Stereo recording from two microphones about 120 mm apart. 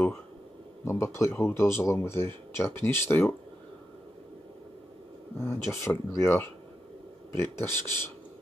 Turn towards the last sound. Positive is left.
turn(degrees=20)  # may be behind; listen again after turning